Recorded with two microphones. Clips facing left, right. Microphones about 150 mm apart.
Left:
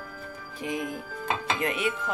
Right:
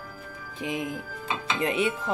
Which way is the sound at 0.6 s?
20° right (ahead or behind).